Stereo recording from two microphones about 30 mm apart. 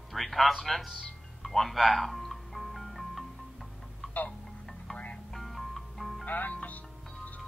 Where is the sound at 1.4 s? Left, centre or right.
Centre.